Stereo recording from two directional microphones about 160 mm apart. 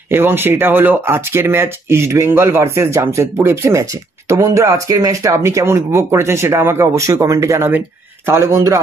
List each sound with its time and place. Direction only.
0.1 s speech: 15° right (ahead or behind)